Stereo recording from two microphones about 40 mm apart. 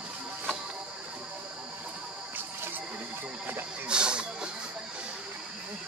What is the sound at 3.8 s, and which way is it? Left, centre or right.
Snake, right.